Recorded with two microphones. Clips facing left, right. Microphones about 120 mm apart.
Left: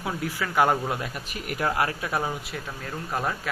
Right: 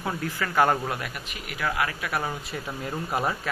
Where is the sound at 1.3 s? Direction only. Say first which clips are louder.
Left 3 dB; 40° left (ahead or behind).